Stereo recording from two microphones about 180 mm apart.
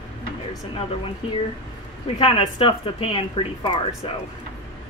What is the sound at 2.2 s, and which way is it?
A woman's voice, 30° left (ahead or behind).